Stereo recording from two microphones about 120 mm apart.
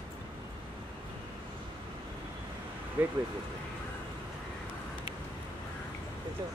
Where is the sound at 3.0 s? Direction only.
15° right (ahead or behind).